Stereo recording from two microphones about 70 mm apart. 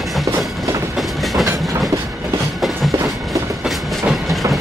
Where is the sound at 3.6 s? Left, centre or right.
Centre.